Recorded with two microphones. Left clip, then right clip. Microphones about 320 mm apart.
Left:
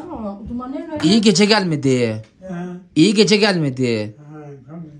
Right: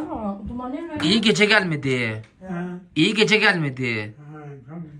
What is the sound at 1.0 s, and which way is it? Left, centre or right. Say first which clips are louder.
A woman's voice: left 3 dB; centre.